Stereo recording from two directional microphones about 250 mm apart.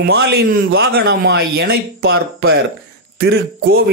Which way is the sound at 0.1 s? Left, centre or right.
Right.